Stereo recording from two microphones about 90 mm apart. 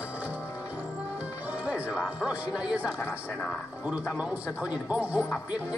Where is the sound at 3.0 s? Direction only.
20° left (ahead or behind).